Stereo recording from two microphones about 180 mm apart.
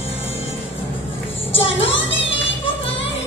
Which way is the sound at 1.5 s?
30° left (ahead or behind).